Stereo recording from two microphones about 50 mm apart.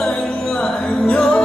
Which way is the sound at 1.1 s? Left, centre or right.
Centre.